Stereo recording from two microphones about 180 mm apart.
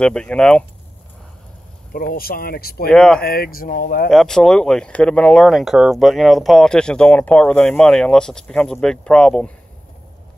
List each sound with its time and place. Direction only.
0.0 s speech: 5° left (ahead or behind)
1.9 s speech: 55° left (ahead or behind)
2.9 s speech: 5° left (ahead or behind)
3.2 s speech: 55° left (ahead or behind)
4.1 s speech: centre (ahead or behind)